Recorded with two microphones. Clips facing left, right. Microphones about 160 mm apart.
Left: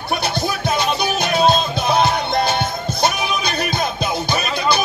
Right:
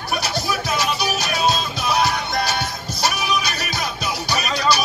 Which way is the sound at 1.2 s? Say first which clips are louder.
Left 8 dB; 25° left (ahead or behind).